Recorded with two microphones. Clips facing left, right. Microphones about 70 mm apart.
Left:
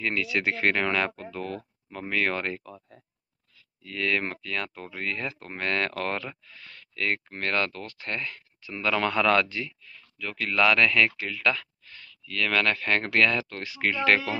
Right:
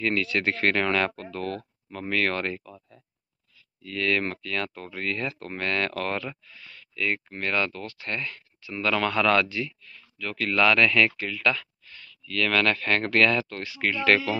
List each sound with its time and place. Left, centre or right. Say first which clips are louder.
0.0 s speech: right 2 dB; centre
3.8 s speech: right 2 dB; left
6.6 s speech: right 1 dB; left
10.1 s speech: right 1 dB; centre